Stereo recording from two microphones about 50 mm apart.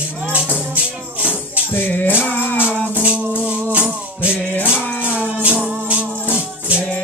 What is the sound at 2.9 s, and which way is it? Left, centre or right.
Music, right.